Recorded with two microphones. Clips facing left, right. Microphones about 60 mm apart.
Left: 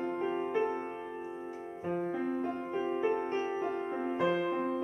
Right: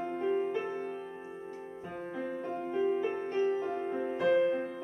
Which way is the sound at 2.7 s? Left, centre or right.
Left.